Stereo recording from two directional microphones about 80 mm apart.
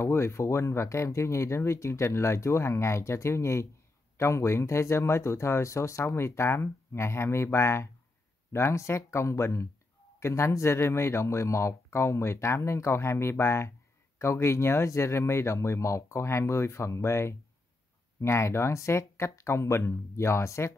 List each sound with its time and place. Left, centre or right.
0.0 s speech: left